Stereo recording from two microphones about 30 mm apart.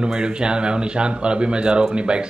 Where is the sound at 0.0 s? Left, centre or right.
Right.